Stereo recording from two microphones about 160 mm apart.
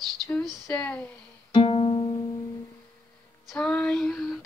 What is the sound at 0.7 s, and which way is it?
Speech, 10° left (ahead or behind).